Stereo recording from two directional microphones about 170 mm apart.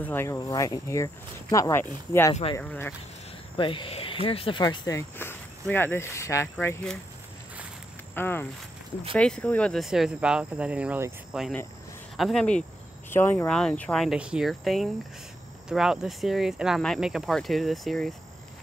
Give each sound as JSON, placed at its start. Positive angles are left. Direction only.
{"t": 0.0, "sound": "speech", "side_deg": 15}
{"t": 3.5, "sound": "speech", "side_deg": 30}
{"t": 8.1, "sound": "speech", "side_deg": 10}
{"t": 12.2, "sound": "speech", "side_deg": 0}